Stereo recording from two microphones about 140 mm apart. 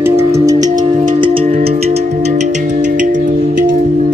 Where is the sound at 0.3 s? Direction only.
25° right (ahead or behind).